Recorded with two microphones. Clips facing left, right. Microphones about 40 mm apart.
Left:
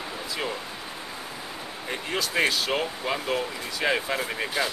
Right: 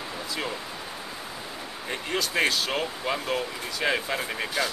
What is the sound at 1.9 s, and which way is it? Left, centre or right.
Speech, centre.